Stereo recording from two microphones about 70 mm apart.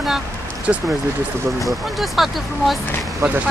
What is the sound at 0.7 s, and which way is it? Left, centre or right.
Speech, right.